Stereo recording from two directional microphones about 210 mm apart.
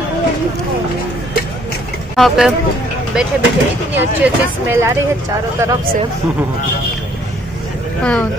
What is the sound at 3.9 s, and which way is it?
Speech, 10° right (ahead or behind).